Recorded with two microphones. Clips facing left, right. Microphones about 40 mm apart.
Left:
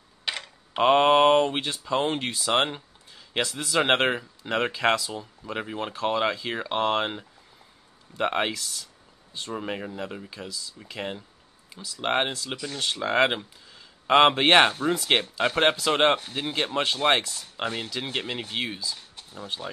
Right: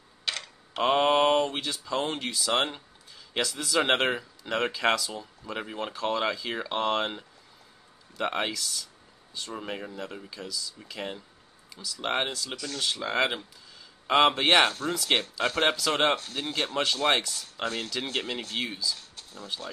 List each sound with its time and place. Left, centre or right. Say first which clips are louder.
0.2 s speech: left 1 dB; centre